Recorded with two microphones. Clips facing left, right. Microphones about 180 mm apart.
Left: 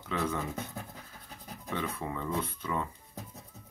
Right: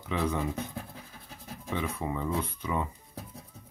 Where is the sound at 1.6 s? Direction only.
10° right (ahead or behind).